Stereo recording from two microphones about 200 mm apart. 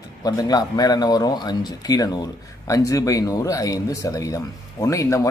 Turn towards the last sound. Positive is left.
turn(degrees=15)  # may be behind; listen again after turning